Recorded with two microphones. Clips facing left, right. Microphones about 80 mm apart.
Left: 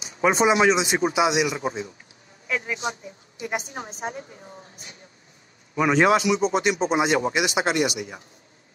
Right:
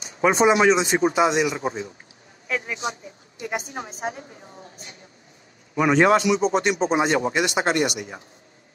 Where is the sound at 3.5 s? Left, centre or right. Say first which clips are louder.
Right 1 dB; right.